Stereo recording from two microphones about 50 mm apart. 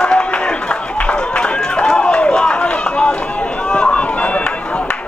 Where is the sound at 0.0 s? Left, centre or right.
Centre.